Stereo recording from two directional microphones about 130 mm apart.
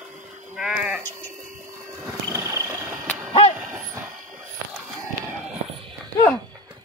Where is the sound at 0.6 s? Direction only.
5° right (ahead or behind).